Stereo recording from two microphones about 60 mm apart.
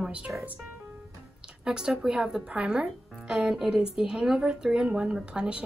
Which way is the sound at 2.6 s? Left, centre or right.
Right.